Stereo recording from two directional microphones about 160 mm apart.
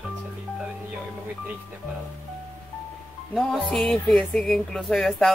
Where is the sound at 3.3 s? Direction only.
Centre (ahead or behind).